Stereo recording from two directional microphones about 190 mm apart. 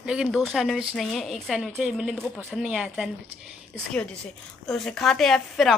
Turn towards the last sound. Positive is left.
turn(degrees=0)  # may be behind; listen again after turning